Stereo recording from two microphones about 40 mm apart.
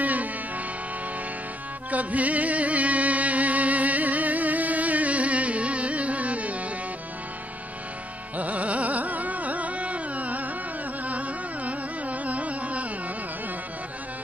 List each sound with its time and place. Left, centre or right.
0.0 s music: right
1.9 s music: right
8.4 s carnatic music: right